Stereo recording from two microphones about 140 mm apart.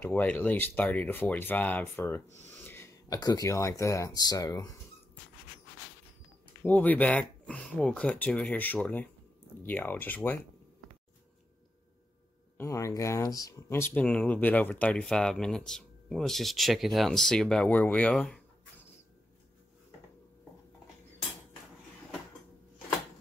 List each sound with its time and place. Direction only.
0.0 s speech: 10° left (ahead or behind)
6.6 s speech: 10° left (ahead or behind)
12.5 s speech: 20° left (ahead or behind); by 18.9 s 5° left (ahead or behind)